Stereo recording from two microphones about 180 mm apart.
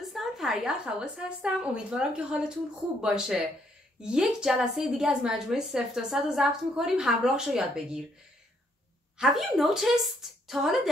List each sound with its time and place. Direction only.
0.1 s a woman's voice: centre (ahead or behind)
9.2 s a woman's voice: centre (ahead or behind)